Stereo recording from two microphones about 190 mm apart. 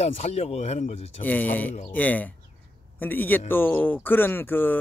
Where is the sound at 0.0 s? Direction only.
35° left (ahead or behind).